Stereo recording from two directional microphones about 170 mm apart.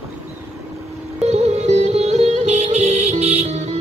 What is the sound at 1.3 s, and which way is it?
Music, 40° right (ahead or behind).